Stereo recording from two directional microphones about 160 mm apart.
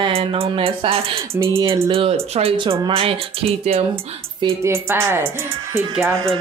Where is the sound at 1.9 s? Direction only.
35° right (ahead or behind).